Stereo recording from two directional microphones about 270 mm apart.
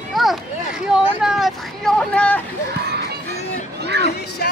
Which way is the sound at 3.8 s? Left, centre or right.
Right.